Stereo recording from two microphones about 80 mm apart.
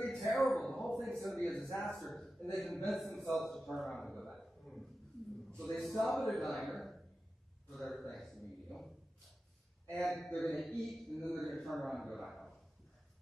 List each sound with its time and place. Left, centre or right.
0.0 s a man's voice: centre
10.0 s a man's voice: centre